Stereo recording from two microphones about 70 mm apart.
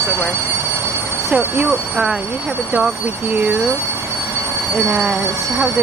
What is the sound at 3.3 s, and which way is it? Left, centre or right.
Speech, right.